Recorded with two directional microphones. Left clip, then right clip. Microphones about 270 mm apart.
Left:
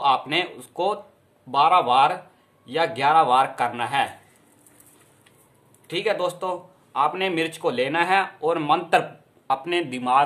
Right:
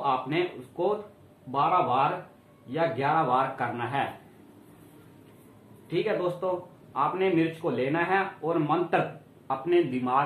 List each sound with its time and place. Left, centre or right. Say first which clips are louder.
0.0 s speech: left 6 dB; left
5.9 s speech: left 4 dB; left